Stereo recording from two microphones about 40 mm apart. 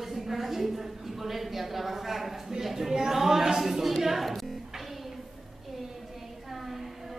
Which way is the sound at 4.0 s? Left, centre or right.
Centre.